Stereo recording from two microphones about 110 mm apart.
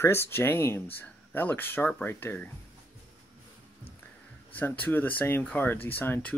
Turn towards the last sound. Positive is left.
turn(degrees=15)  # may be behind; listen again after turning